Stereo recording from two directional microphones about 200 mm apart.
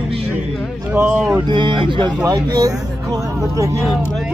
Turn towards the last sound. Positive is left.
turn(degrees=-15)  # may be behind; listen again after turning